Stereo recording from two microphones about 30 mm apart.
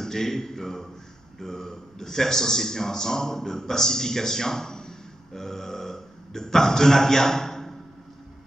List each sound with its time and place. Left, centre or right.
0.0 s a man's voice: centre